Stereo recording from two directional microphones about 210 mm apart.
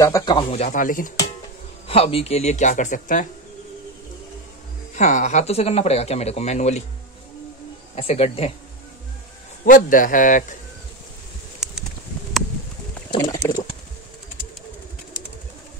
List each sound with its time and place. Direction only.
0.0 s speech: 15° left (ahead or behind); by 1.1 s 40° left (ahead or behind)
1.9 s speech: 25° left (ahead or behind)
4.9 s speech: 35° left (ahead or behind)
7.9 s speech: 30° left (ahead or behind)
9.7 s speech: 40° left (ahead or behind)
13.1 s speech: 20° left (ahead or behind)